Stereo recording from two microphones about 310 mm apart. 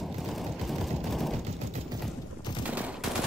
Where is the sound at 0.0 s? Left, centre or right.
Centre.